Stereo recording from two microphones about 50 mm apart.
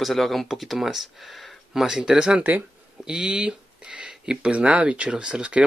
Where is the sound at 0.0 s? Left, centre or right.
Centre.